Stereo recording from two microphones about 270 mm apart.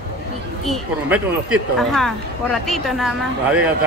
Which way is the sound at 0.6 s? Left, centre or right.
Centre.